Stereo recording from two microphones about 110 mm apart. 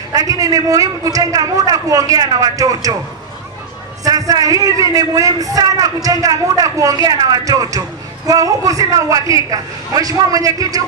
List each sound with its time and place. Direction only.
0.1 s a man's voice: 30° right (ahead or behind)
4.0 s a man's voice: 35° right (ahead or behind)